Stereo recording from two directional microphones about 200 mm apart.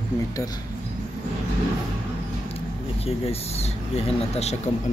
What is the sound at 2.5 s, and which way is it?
Speech, 30° left (ahead or behind).